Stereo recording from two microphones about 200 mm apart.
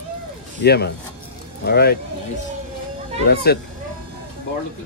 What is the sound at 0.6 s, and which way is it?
Speech, 55° left (ahead or behind).